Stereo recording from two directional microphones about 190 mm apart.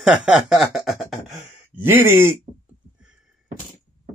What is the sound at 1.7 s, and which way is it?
Speech, 10° right (ahead or behind).